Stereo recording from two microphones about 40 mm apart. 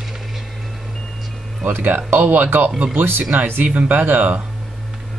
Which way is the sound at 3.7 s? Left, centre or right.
Right.